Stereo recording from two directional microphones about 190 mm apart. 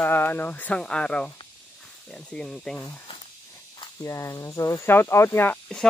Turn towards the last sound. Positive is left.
turn(degrees=5)  # may be behind; listen again after turning